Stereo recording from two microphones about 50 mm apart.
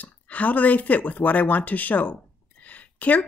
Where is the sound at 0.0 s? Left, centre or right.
Left.